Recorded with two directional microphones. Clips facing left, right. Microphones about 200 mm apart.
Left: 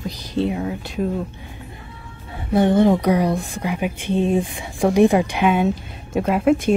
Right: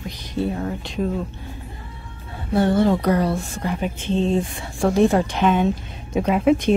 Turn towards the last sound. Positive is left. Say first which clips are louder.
# even
turn(degrees=5)  # may be behind; listen again after turning